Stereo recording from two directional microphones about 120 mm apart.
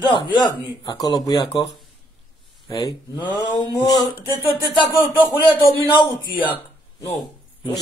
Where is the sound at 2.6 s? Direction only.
30° left (ahead or behind).